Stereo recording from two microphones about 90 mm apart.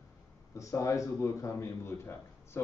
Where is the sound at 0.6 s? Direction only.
35° left (ahead or behind).